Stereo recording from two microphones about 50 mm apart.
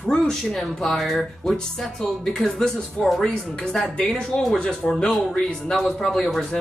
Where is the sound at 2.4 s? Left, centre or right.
Centre.